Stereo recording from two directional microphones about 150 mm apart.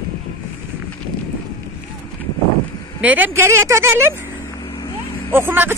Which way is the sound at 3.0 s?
10° right (ahead or behind).